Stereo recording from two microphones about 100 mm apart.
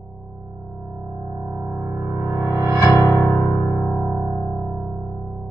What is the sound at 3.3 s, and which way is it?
Electric piano, 35° left (ahead or behind).